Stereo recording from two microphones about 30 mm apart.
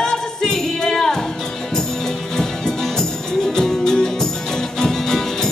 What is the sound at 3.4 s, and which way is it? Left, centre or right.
Music, centre.